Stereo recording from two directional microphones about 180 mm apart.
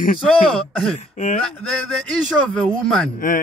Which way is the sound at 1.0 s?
40° left (ahead or behind).